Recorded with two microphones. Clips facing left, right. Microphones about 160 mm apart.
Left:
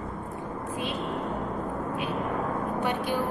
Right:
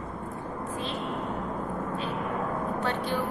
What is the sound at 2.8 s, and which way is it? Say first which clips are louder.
Speech: left 2 dB; 10° left (ahead or behind).